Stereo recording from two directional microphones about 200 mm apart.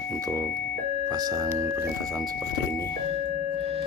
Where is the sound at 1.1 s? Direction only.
20° right (ahead or behind).